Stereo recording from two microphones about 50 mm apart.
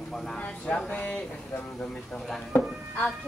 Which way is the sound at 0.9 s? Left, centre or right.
Left.